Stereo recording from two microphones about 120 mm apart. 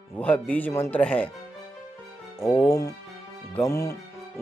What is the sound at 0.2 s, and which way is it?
Speech, 10° left (ahead or behind).